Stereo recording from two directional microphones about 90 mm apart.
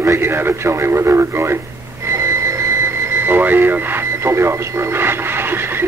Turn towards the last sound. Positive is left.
turn(degrees=-25)  # may be behind; listen again after turning